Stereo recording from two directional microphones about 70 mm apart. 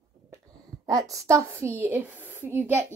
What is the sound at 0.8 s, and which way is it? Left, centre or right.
A woman's voice, right.